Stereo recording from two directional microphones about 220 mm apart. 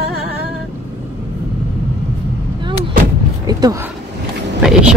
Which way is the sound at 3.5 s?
15° right (ahead or behind).